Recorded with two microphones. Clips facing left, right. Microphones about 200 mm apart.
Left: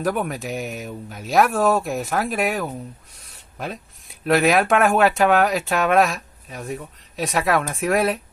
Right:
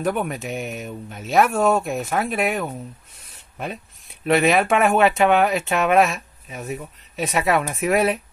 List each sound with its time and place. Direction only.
0.0 s speech: centre (ahead or behind)